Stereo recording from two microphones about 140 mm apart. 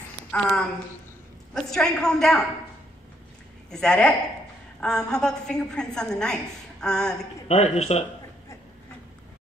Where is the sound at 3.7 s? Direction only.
5° left (ahead or behind).